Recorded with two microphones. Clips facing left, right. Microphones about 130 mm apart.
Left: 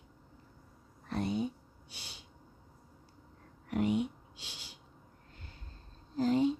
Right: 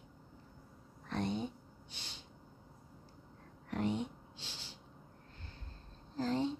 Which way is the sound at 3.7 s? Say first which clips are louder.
Left 5 dB; 10° left (ahead or behind).